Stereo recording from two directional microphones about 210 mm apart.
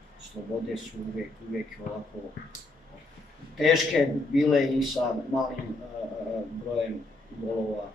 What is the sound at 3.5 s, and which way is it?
A man's voice, centre (ahead or behind).